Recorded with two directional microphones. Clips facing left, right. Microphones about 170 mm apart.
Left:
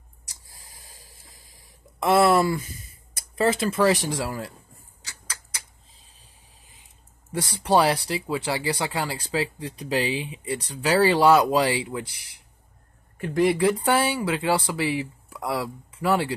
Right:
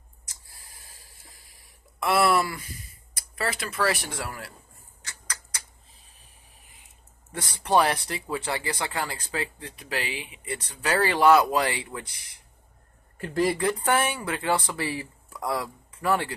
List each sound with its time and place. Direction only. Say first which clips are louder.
0.5 s a sound: left 3 dB; 15° left (ahead or behind)
3.3 s speech: left 8 dB; 25° left (ahead or behind)
7.5 s speech: left 2 dB; 10° left (ahead or behind)
10.0 s speech: left 8 dB; 35° left (ahead or behind)
10.5 s speech: left 4 dB; 10° left (ahead or behind)
13.2 s speech: left 4 dB; centre (ahead or behind)
15.2 s a sound: right 3 dB; 5° left (ahead or behind)
15.9 s speech: left 3 dB; 10° left (ahead or behind)